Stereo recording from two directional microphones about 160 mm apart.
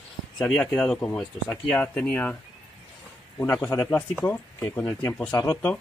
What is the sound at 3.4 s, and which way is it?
Speech, 15° left (ahead or behind).